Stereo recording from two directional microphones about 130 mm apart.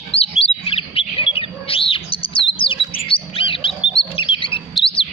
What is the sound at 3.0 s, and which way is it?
Wild animals, 45° left (ahead or behind).